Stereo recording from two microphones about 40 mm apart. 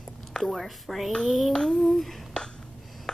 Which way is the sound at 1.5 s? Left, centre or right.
Centre.